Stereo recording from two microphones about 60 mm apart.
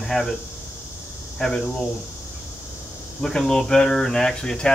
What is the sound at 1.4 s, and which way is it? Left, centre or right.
Speech, centre.